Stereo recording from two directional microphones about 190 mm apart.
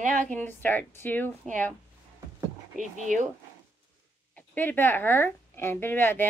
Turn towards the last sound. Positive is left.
turn(degrees=10)  # may be behind; listen again after turning